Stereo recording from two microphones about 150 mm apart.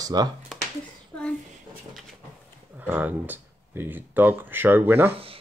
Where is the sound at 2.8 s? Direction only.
10° right (ahead or behind).